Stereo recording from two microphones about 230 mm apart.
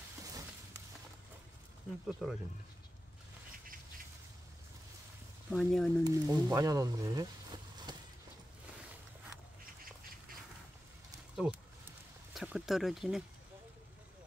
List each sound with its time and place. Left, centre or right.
0.2 s a sound: centre
2.2 s speech: centre
5.5 s speech: centre
6.0 s speech: centre
7.9 s a sound: centre
11.3 s speech: centre